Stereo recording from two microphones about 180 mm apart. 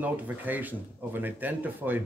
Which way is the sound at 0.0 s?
10° right (ahead or behind).